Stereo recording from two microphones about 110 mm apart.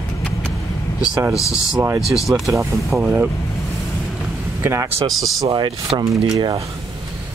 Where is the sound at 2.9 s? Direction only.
15° right (ahead or behind).